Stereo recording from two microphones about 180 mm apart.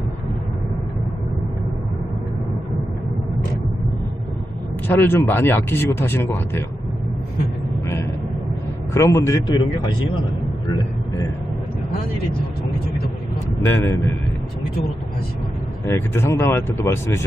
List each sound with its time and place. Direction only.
4.8 s speech: 10° left (ahead or behind)
8.9 s speech: 15° left (ahead or behind)
13.7 s speech: 15° left (ahead or behind)
15.9 s speech: 15° left (ahead or behind)